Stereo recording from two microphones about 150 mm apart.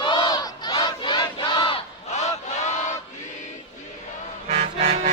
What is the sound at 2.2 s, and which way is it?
Chant, 50° left (ahead or behind).